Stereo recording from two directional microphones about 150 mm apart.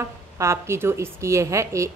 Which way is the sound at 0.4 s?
20° right (ahead or behind).